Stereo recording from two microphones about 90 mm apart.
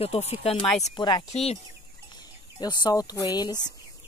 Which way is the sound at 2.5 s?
50° left (ahead or behind).